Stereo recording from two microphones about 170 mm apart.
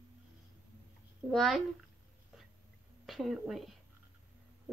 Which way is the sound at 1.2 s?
Centre (ahead or behind).